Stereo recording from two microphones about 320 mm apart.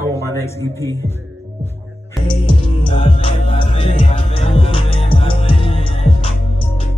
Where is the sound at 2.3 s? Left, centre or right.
Centre.